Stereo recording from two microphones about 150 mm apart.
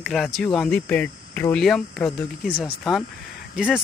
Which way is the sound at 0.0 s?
Centre (ahead or behind).